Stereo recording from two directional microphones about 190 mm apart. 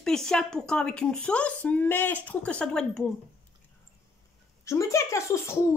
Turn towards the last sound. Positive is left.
turn(degrees=15)  # may be behind; listen again after turning